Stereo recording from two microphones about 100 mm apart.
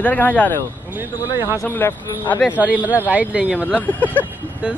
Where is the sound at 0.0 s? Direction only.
15° left (ahead or behind).